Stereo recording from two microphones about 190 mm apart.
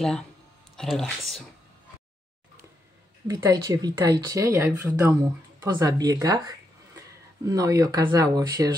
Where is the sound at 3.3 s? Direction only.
20° right (ahead or behind).